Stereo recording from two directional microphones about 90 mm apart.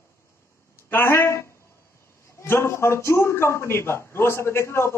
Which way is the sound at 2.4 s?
30° left (ahead or behind).